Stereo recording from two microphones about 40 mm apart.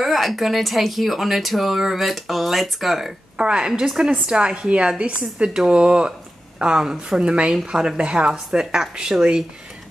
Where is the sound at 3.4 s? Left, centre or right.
Right.